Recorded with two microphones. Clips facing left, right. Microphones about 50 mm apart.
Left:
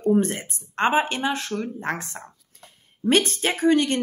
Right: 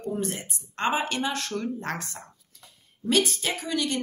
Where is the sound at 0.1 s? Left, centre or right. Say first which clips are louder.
Left 9 dB; left.